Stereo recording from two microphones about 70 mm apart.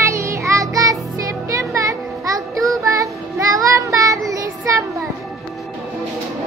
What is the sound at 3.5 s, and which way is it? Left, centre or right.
Child singing, right.